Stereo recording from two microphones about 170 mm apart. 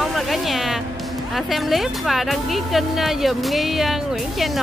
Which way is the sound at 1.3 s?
Centre (ahead or behind).